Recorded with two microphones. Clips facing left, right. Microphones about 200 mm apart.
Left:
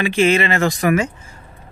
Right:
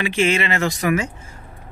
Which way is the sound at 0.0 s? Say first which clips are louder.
Left 4 dB; 45° left (ahead or behind).